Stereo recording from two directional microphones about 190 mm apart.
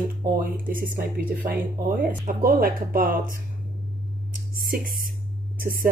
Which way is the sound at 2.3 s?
50° right (ahead or behind).